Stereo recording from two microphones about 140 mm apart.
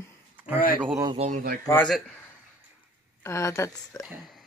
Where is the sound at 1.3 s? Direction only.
90° right.